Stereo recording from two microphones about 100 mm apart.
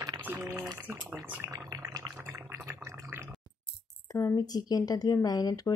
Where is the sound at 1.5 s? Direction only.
35° right (ahead or behind).